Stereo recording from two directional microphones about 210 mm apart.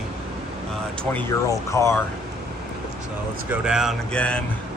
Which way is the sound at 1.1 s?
15° left (ahead or behind).